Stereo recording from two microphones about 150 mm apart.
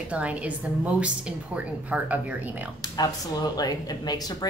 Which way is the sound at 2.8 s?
25° left (ahead or behind).